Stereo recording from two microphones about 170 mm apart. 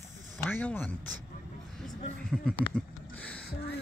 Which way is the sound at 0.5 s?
10° left (ahead or behind).